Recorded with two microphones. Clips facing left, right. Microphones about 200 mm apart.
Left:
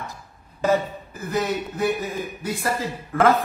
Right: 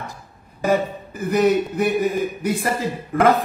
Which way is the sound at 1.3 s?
15° right (ahead or behind).